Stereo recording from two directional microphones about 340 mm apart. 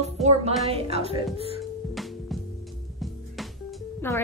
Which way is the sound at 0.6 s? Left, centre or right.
Centre.